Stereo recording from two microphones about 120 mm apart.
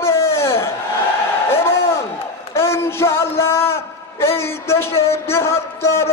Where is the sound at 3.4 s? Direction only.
20° left (ahead or behind).